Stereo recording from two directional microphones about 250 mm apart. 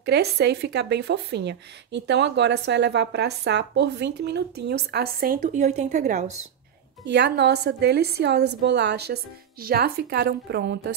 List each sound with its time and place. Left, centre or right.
0.0 s speech: right
7.1 s speech: right